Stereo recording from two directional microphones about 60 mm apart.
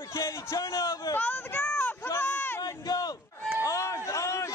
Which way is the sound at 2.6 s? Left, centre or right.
Left.